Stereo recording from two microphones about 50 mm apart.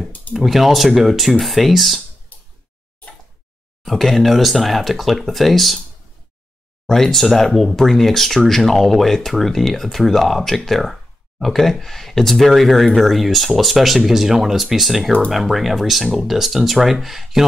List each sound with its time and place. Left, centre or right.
0.3 s speech: centre
2.3 s a sound: left
3.8 s speech: centre
6.9 s speech: centre